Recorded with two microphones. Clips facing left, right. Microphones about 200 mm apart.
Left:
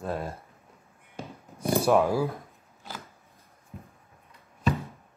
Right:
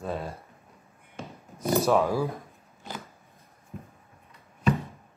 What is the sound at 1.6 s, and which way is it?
Speech, 10° left (ahead or behind).